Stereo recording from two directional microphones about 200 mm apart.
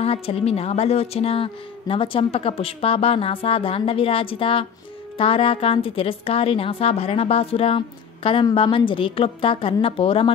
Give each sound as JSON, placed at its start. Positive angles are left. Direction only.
{"t": 0.0, "sound": "a woman's voice", "side_deg": 30}